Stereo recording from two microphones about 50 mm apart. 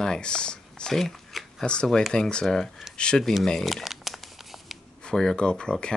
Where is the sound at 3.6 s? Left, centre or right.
Centre.